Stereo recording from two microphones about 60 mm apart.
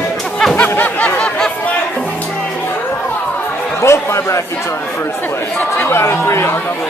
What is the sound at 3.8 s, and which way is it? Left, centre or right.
Speech, left.